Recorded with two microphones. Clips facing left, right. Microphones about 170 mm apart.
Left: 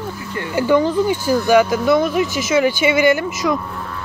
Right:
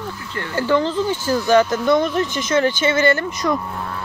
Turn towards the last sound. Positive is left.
turn(degrees=5)  # may be behind; listen again after turning